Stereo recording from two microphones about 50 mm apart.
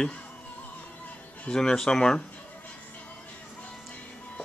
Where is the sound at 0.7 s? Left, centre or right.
Left.